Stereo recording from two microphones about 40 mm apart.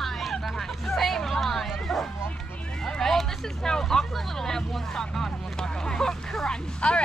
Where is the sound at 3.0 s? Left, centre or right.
Centre.